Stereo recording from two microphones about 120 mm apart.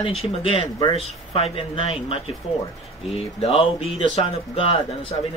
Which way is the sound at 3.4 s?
55° left (ahead or behind).